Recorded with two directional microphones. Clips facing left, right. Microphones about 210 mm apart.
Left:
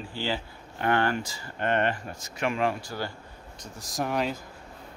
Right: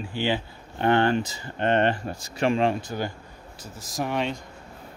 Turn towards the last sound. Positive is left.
turn(degrees=0)  # may be behind; listen again after turning